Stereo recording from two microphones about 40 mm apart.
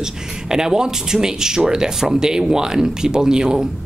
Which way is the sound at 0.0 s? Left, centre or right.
Centre.